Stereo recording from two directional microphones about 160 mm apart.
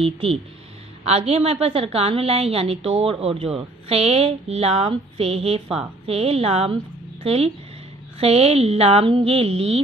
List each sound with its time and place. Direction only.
0.0 s a woman's voice: 35° right (ahead or behind)